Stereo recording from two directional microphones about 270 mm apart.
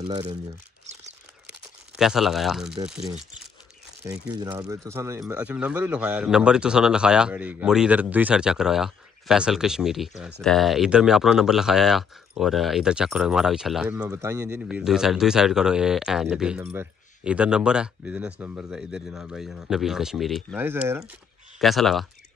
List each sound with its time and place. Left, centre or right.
0.1 s speech: right
1.5 s crumpling: centre
4.0 s a man's voice: centre